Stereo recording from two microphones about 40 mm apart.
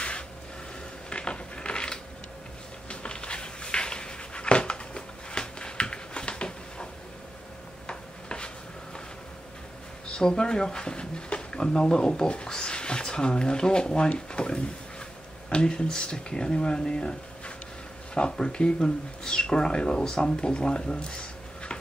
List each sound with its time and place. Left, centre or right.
1.1 s a sound: left
7.8 s tick-tock: left
10.0 s speech: centre
18.1 s speech: left